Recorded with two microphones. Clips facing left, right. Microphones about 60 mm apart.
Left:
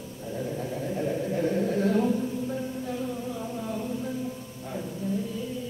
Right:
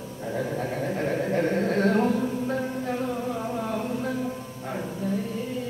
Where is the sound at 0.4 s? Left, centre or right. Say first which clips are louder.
Right 3 dB; right.